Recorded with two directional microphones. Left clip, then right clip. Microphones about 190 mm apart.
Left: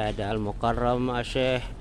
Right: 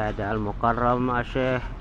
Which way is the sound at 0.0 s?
55° left (ahead or behind).